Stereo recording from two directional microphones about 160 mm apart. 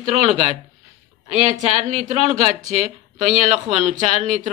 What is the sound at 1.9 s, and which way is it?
A woman's voice, 45° right (ahead or behind).